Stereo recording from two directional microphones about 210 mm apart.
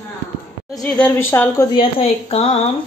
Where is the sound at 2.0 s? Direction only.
30° left (ahead or behind).